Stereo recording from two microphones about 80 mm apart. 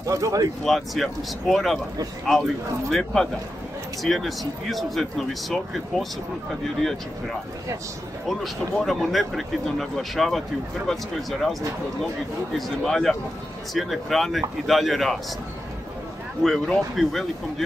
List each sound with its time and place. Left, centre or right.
0.0 s speech: right
0.7 s speech: centre
2.9 s speech: centre
8.3 s speech: centre
12.5 s speech: centre
16.4 s speech: centre